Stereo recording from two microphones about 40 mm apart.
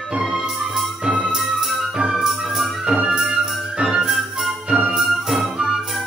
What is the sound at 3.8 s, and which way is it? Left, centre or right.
Music, right.